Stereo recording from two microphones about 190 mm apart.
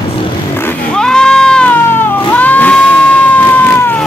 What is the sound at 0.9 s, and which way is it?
Cat, 5° left (ahead or behind).